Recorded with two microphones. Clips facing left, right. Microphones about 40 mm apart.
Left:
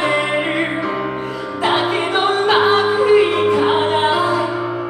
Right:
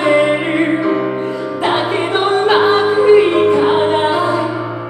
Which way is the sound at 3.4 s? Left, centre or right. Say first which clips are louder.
Right 3 dB; centre.